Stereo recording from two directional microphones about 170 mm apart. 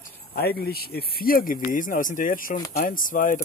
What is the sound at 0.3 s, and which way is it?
Speech, 65° left (ahead or behind).